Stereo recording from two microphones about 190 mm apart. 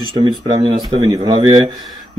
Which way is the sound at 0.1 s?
25° right (ahead or behind).